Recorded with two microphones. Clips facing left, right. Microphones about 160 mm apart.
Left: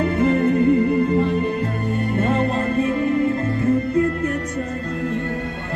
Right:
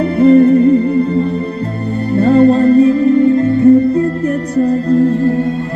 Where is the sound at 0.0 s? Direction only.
30° right (ahead or behind).